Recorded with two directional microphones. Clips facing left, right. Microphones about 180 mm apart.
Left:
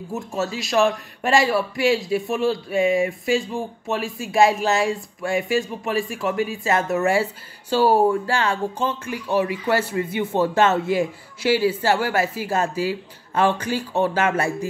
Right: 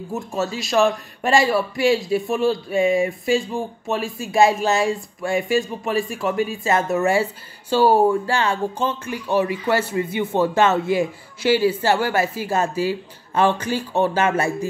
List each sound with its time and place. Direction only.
0.4 s speech: 30° right (ahead or behind)
7.8 s speech: 5° left (ahead or behind)
8.1 s speech: 25° right (ahead or behind)